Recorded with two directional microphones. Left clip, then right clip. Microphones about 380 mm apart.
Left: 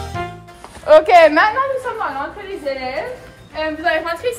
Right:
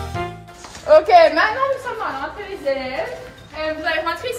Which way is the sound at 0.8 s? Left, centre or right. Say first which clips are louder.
Left 2 dB; left.